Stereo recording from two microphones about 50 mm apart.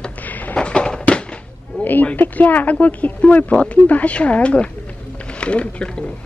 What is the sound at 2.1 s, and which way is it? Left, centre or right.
A woman's voice, left.